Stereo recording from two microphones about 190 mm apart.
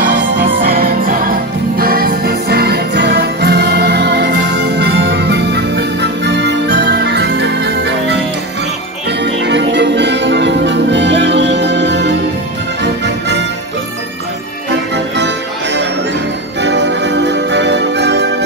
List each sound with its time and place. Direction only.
0.4 s music: 50° right (ahead or behind)
1.8 s jingle bell: 50° right (ahead or behind)
9.2 s music: 65° right (ahead or behind)
14.7 s music: 65° right (ahead or behind)